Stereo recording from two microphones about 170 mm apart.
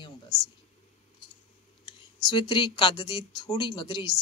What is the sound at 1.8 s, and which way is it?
Speech, 25° left (ahead or behind).